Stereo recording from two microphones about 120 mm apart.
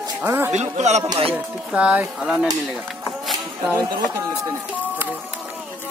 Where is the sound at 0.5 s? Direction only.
70° right (ahead or behind).